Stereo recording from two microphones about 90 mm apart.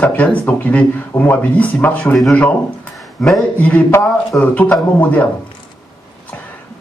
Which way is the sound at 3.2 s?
5° left (ahead or behind).